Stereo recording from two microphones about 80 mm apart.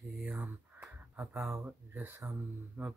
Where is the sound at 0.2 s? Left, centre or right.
Right.